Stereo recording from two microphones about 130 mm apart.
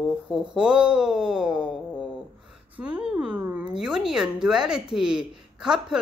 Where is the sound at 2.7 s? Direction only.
10° right (ahead or behind).